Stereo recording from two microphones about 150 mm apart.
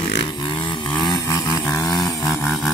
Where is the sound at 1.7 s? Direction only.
25° left (ahead or behind).